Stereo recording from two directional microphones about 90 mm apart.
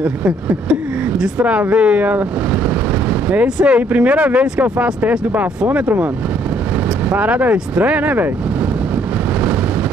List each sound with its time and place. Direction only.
1.1 s speech: 10° right (ahead or behind)
7.1 s speech: 15° right (ahead or behind)